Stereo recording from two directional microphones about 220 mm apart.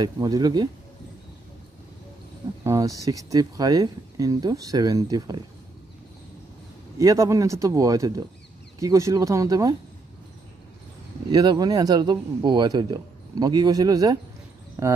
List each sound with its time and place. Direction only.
0.0 s speech: 15° right (ahead or behind)
2.6 s speech: 15° right (ahead or behind)
7.0 s speech: 15° right (ahead or behind)
11.2 s speech: 20° right (ahead or behind)